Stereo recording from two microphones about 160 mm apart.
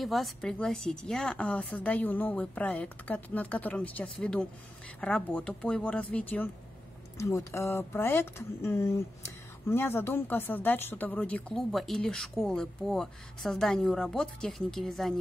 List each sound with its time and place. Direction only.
0.0 s speech: centre (ahead or behind)